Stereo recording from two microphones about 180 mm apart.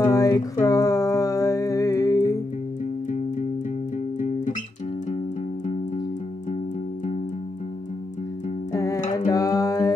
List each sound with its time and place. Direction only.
0.0 s music: 20° left (ahead or behind)
8.7 s music: 20° left (ahead or behind)